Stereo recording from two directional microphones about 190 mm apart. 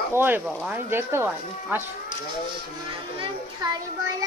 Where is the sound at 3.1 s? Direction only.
20° right (ahead or behind).